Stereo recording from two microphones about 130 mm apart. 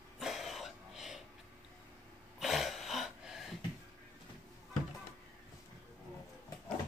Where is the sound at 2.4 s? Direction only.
Centre (ahead or behind).